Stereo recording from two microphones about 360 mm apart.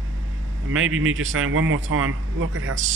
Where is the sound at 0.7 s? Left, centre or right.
Right.